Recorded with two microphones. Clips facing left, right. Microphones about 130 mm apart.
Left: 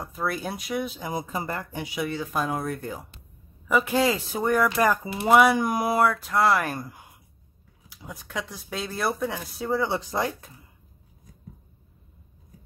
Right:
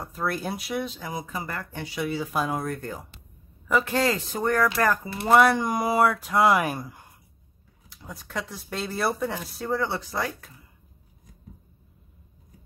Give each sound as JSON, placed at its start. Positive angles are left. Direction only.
{"t": 0.0, "sound": "speech", "side_deg": 0}
{"t": 1.1, "sound": "speech", "side_deg": 25}
{"t": 1.7, "sound": "speech", "side_deg": 10}
{"t": 2.0, "sound": "speech", "side_deg": -5}
{"t": 7.9, "sound": "speech", "side_deg": 5}